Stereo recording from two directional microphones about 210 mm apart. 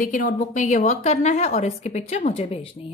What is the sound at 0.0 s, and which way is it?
A woman's voice, 40° left (ahead or behind).